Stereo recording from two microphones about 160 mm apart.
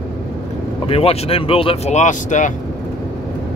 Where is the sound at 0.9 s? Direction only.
35° left (ahead or behind).